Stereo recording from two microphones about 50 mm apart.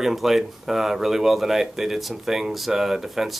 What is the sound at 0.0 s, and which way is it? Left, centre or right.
Speech, centre.